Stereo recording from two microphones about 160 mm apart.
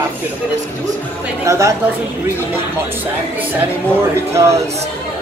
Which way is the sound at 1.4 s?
20° right (ahead or behind).